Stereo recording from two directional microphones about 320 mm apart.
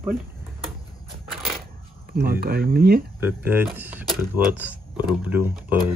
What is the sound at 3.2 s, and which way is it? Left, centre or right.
Speech, centre.